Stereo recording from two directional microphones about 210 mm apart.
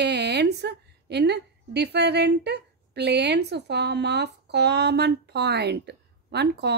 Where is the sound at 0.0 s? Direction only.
55° right (ahead or behind).